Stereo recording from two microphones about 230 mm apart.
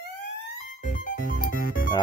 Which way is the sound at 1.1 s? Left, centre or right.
Left.